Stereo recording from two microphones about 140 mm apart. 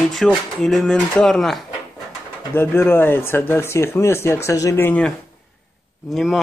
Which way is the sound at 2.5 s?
15° left (ahead or behind).